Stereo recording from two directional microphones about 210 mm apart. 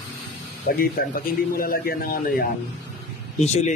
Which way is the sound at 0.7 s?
45° left (ahead or behind).